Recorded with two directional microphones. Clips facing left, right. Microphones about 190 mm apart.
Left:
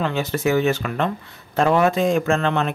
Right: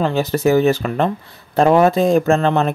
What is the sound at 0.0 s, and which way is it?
Speech, 35° right (ahead or behind).